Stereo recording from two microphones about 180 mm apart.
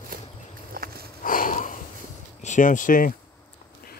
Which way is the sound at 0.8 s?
55° right (ahead or behind).